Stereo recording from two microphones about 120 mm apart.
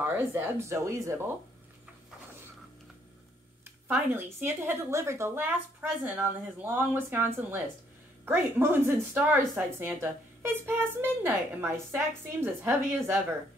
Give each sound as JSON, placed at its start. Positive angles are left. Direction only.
{"t": 0.0, "sound": "speech", "side_deg": -15}
{"t": 4.1, "sound": "speech", "side_deg": -20}